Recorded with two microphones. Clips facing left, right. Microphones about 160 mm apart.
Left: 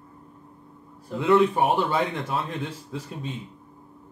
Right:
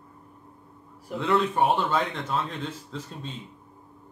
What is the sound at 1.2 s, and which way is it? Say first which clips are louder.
A man's voice: left 3 dB; 5° left (ahead or behind).